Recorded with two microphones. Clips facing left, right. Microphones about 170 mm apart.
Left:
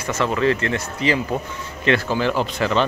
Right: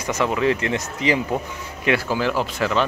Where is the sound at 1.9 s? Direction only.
5° right (ahead or behind).